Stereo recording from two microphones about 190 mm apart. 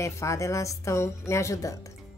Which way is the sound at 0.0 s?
15° left (ahead or behind).